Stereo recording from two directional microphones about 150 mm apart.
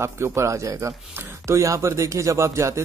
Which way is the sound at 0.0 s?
20° right (ahead or behind).